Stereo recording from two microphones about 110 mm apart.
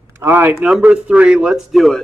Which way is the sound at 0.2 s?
20° right (ahead or behind).